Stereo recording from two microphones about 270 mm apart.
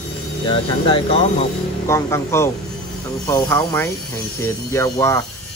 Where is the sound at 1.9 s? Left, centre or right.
Centre.